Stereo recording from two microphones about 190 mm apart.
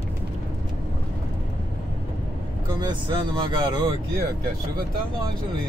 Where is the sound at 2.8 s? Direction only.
20° right (ahead or behind).